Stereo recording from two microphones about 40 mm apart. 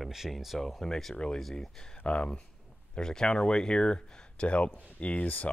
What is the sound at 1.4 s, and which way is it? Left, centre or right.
Speech, centre.